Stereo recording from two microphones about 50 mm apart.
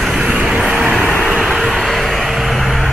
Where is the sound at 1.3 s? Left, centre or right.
Centre.